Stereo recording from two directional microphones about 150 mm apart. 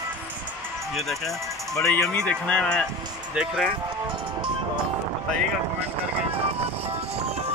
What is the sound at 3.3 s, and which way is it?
Speech, 5° right (ahead or behind).